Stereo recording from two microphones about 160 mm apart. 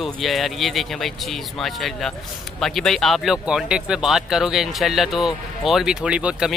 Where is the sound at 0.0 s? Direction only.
Centre (ahead or behind).